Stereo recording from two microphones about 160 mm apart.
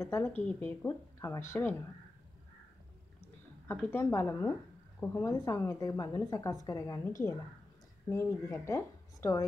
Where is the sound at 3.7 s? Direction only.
15° left (ahead or behind).